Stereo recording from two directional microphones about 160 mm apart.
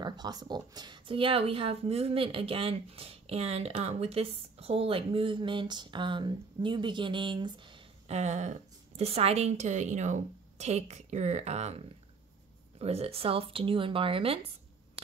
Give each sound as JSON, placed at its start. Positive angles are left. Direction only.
{"t": 0.0, "sound": "speech", "side_deg": -25}
{"t": 8.1, "sound": "a woman's voice", "side_deg": -45}